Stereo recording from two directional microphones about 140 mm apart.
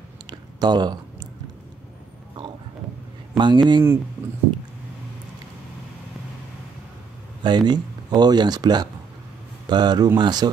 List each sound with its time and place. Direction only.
0.3 s a sound: 30° right (ahead or behind)
3.3 s speech: 35° right (ahead or behind)
7.4 s speech: 30° right (ahead or behind)